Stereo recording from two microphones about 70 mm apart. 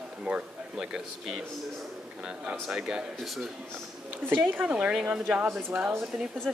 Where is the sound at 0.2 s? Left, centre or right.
Centre.